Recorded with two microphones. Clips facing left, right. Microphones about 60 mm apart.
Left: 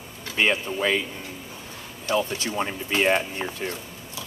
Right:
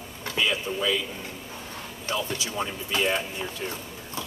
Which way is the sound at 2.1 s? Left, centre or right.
Left.